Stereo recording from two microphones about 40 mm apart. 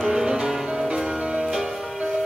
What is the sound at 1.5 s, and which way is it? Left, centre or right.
Music, centre.